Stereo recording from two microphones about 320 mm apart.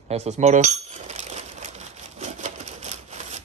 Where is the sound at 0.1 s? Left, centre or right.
Right.